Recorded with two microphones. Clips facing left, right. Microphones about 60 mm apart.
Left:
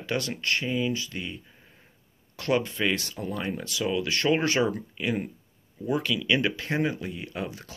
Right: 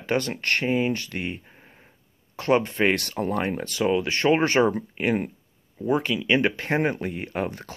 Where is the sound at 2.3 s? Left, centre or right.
Right.